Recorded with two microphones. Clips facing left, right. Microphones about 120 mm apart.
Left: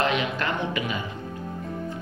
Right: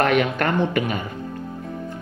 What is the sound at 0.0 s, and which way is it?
Speech, 55° right (ahead or behind).